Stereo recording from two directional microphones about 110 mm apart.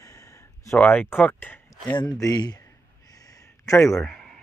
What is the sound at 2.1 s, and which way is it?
Speech, 35° left (ahead or behind).